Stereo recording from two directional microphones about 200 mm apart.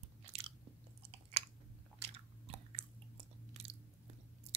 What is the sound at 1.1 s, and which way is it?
Chewing, 30° right (ahead or behind).